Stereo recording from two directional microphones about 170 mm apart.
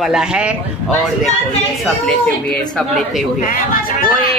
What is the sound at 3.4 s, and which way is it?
Speech, 55° left (ahead or behind).